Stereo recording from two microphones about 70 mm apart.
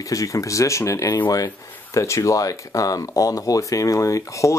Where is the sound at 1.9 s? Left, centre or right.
Left.